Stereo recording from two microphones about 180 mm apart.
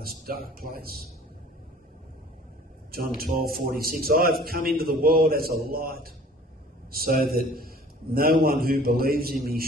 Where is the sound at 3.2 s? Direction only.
55° right (ahead or behind).